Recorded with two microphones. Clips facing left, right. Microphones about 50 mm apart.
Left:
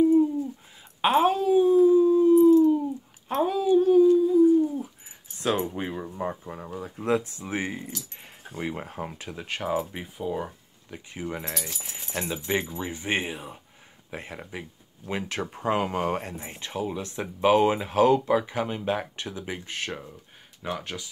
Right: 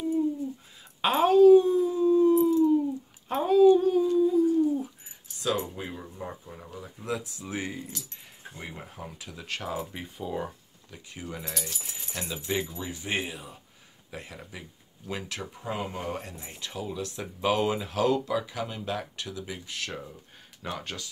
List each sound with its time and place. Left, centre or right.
1.0 s dog: centre
3.3 s a sound: centre
3.6 s dog: centre
5.4 s speech: left
7.4 s speech: left
8.5 s speech: left
9.0 s speech: left
9.4 s speech: left
10.0 s speech: centre
10.9 s speech: left
15.4 s speech: left
16.2 s speech: left
20.6 s speech: centre